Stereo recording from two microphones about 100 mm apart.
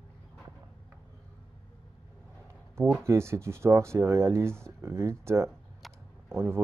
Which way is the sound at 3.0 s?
25° right (ahead or behind).